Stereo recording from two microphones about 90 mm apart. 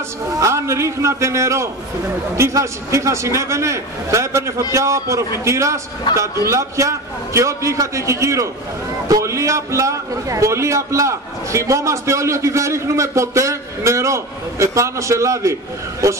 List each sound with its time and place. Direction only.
0.4 s a man's voice: 35° right (ahead or behind)